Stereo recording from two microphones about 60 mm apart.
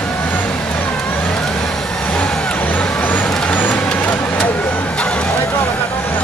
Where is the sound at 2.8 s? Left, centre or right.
Left.